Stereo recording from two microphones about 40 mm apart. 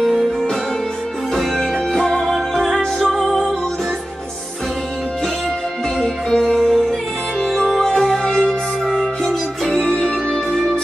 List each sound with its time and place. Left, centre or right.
1.3 s music: centre
2.2 s music: centre
6.0 s music: centre
9.8 s music: left